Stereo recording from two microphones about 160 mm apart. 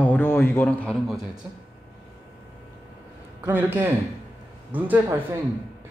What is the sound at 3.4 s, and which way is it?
A woman's voice, 15° right (ahead or behind).